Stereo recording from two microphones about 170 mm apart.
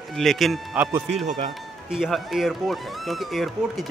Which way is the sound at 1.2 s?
45° right (ahead or behind).